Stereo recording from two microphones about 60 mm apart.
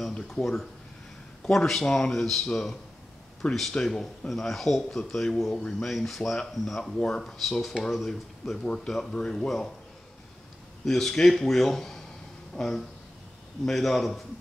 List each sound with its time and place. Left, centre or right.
0.1 s a man's voice: centre
3.4 s speech: centre
3.8 s a man's voice: centre
5.9 s a man's voice: centre
10.9 s a man's voice: centre